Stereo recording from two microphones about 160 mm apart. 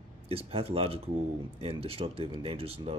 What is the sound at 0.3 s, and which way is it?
Speech, 35° right (ahead or behind).